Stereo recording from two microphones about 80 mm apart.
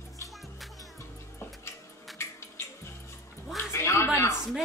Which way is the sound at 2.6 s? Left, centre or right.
Left.